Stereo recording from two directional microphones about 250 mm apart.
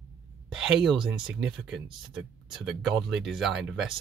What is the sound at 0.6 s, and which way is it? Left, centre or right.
Speech, centre.